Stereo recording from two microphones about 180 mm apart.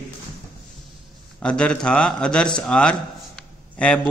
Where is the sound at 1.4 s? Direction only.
5° left (ahead or behind).